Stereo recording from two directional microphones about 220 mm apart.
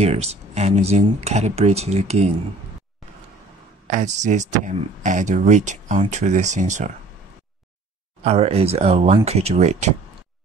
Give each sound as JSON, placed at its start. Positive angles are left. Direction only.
{"t": 0.0, "sound": "speech", "side_deg": -30}
{"t": 3.8, "sound": "speech", "side_deg": -35}
{"t": 8.2, "sound": "speech", "side_deg": -30}